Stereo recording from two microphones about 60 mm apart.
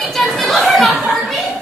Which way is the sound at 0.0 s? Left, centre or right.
Centre.